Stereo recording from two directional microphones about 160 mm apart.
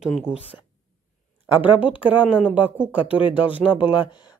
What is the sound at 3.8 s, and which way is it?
Speech, 30° left (ahead or behind).